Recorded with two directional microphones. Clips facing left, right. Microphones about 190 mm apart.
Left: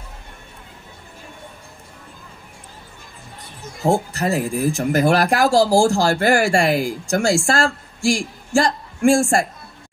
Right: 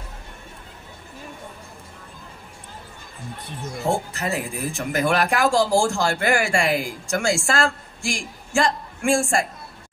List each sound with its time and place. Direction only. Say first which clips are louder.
4.1 s speech: left 6 dB; 35° left (ahead or behind)